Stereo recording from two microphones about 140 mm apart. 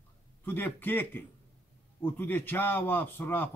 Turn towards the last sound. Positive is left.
turn(degrees=15)  # may be behind; listen again after turning